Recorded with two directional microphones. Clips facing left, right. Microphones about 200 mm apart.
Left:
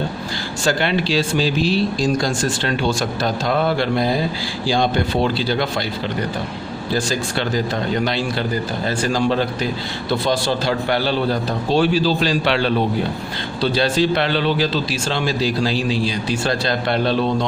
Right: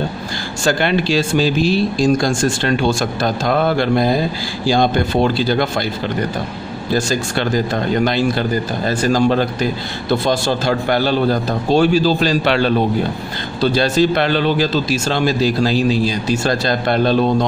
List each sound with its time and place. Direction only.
0.7 s speech: 50° right (ahead or behind)
7.0 s speech: 45° right (ahead or behind)